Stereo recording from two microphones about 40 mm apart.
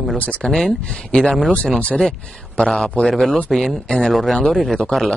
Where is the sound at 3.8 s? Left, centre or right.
Centre.